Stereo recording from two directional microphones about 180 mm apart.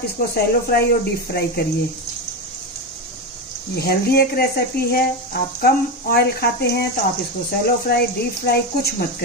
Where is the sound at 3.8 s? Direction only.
60° left (ahead or behind).